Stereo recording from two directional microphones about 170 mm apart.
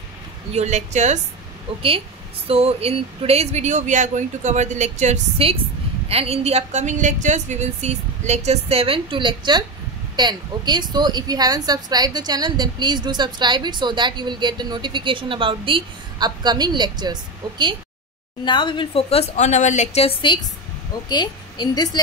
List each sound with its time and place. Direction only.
0.6 s speech: 40° right (ahead or behind)
2.4 s a woman's voice: 35° right (ahead or behind)
18.4 s a woman's voice: 30° left (ahead or behind)